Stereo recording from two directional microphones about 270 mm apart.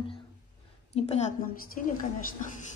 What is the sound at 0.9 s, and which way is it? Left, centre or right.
Speech, left.